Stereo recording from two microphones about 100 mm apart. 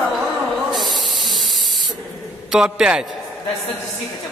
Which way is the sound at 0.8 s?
Centre (ahead or behind).